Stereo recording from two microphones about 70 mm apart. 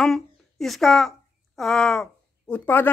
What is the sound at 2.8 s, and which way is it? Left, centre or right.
Speech, left.